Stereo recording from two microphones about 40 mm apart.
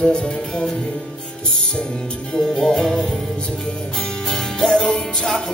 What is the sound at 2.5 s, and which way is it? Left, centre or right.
Music, centre.